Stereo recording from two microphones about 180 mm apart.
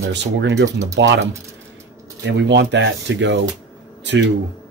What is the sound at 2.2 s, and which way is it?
Speech, 80° right.